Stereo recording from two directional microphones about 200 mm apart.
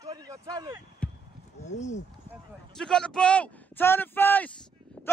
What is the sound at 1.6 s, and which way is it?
Speech, 35° left (ahead or behind).